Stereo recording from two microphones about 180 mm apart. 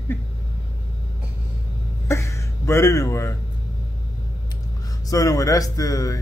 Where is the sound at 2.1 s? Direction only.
15° left (ahead or behind).